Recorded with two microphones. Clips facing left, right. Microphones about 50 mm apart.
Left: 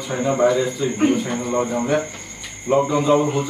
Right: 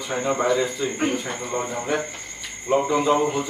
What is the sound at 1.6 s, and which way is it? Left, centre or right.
Speech, centre.